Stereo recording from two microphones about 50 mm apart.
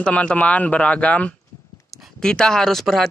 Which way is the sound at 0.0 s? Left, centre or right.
Left.